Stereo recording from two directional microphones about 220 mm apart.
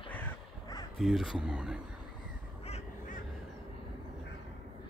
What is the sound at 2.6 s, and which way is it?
Crow, 30° left (ahead or behind).